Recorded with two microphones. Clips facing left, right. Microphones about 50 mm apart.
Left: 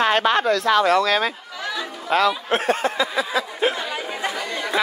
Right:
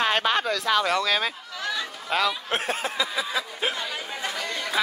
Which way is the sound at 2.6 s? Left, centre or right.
Centre.